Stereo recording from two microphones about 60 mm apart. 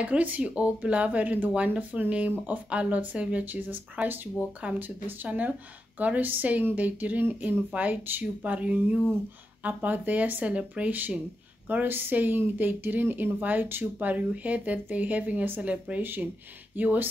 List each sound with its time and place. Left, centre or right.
0.0 s a woman's voice: right
16.0 s a woman's voice: right